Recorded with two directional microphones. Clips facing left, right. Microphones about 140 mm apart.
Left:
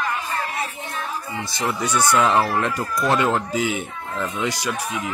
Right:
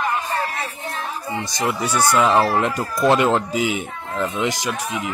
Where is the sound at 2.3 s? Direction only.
25° right (ahead or behind).